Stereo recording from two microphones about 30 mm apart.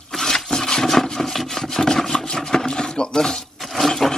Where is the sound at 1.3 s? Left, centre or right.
Centre.